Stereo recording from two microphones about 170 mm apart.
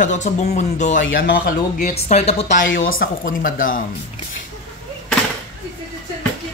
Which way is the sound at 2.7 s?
90° left.